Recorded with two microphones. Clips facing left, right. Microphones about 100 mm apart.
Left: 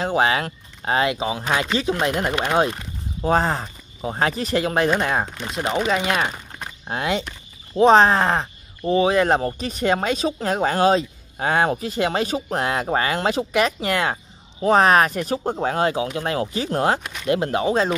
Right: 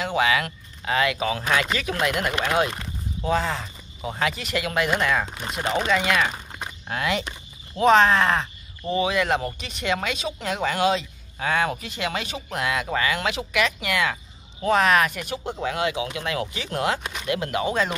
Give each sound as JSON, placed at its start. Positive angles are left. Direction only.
{"t": 0.0, "sound": "speech", "side_deg": 35}
{"t": 3.2, "sound": "speech", "side_deg": 40}
{"t": 5.5, "sound": "speech", "side_deg": 0}
{"t": 5.9, "sound": "speech", "side_deg": 30}